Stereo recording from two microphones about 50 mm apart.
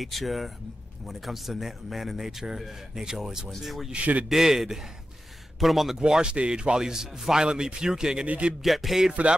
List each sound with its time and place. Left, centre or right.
0.0 s a man's voice: centre
3.9 s speech: right
4.3 s a man's voice: centre
5.9 s a man's voice: centre
8.3 s speech: right
8.6 s speech: centre
9.1 s speech: right